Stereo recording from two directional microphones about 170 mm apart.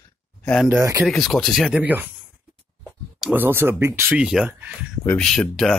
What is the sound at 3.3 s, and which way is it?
Speech, 10° right (ahead or behind).